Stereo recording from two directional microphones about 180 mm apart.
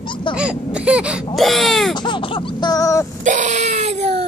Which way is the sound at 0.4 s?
5° right (ahead or behind).